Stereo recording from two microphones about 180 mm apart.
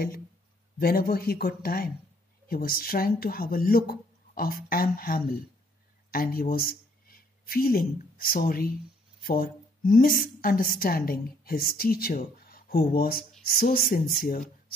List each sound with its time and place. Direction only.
0.7 s a woman's voice: 55° left (ahead or behind)